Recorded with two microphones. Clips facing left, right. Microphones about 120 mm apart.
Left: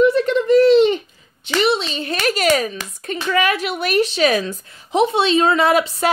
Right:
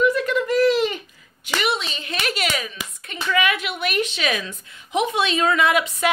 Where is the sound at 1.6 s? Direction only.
30° left (ahead or behind).